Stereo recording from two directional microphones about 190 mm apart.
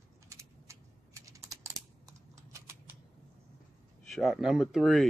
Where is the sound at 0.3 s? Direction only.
15° right (ahead or behind).